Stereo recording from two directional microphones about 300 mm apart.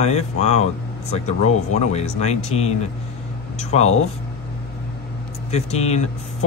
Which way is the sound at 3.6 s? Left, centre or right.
Left.